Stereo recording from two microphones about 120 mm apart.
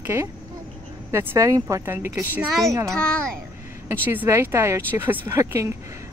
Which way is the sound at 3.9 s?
15° right (ahead or behind).